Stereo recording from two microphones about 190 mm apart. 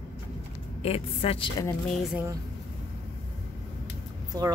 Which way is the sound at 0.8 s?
30° left (ahead or behind).